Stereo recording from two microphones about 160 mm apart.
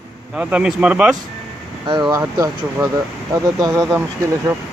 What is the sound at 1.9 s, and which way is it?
Speech, 25° right (ahead or behind).